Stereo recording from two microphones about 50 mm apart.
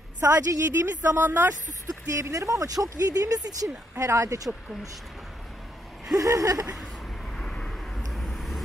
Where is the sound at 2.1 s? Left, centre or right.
Right.